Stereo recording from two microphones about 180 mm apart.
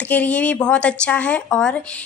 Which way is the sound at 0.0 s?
10° left (ahead or behind).